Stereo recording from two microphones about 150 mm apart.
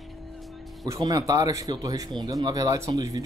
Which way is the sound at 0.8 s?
25° right (ahead or behind).